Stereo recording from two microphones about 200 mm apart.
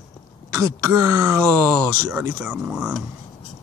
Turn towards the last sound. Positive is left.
turn(degrees=-5)  # may be behind; listen again after turning